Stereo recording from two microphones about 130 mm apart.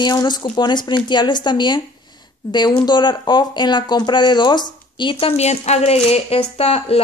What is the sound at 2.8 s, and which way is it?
Speech, 35° left (ahead or behind).